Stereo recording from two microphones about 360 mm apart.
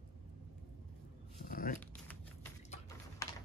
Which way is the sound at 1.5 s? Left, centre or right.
Left.